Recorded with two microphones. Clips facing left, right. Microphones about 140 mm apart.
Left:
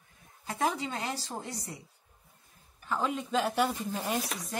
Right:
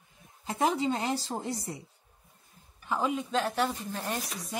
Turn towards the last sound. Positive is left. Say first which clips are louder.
# left 2 dB
turn(degrees=5)  # may be behind; listen again after turning